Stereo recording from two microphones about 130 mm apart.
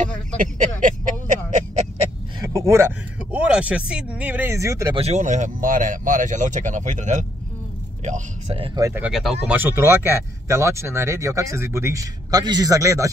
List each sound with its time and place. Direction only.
0.0 s a sound: 80° right
2.4 s a sound: 25° right (ahead or behind)
3.2 s speech: 10° right (ahead or behind)
4.9 s speech: 60° right (ahead or behind)
8.7 s speech: 25° right (ahead or behind)
9.0 s speech: 5° right (ahead or behind)
9.6 s speech: 15° right (ahead or behind)